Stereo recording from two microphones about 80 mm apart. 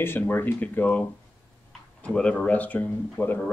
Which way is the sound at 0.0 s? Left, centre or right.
Left.